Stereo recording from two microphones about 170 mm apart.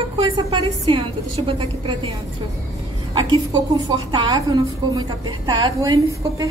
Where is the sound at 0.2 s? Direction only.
30° right (ahead or behind).